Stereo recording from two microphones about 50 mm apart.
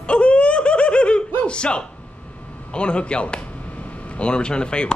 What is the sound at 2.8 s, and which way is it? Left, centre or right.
A man's voice, left.